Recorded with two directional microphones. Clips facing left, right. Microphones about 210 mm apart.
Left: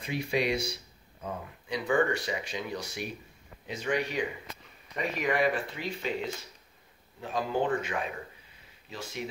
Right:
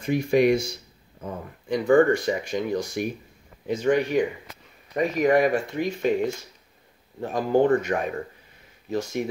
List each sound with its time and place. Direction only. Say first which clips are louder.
0.0 s speech: right 10 dB; 45° right (ahead or behind)